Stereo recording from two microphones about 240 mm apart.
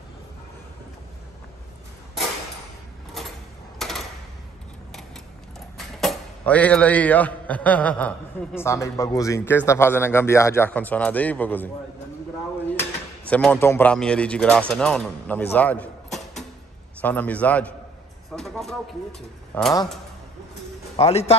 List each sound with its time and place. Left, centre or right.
3.7 s a sound: centre
5.9 s a man's voice: centre
13.3 s a man's voice: centre
20.9 s a man's voice: left